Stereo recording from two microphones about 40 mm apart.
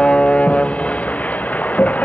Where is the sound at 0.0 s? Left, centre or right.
Left.